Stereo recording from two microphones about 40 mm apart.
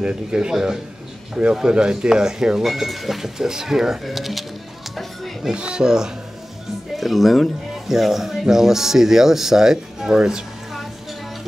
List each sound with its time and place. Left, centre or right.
0.0 s speech: right
2.7 s speech: centre
4.9 s music: centre
5.5 s speech: right
7.0 s speech: centre